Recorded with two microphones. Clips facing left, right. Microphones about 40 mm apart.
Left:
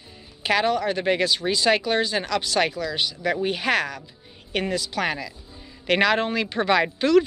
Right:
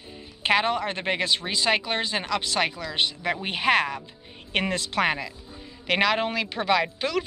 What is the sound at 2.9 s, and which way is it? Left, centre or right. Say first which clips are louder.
Speech: left 1 dB; right.